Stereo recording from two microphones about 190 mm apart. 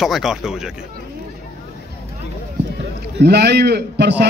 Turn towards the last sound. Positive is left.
turn(degrees=-60)  # may be behind; listen again after turning